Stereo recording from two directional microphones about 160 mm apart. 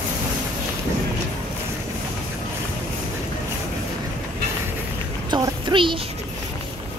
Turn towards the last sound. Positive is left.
turn(degrees=-30)  # may be behind; listen again after turning